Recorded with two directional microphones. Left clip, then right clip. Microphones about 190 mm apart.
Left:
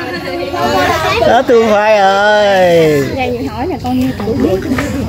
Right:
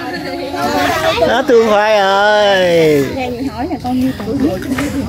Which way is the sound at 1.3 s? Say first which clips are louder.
Left 3 dB; 10° right (ahead or behind).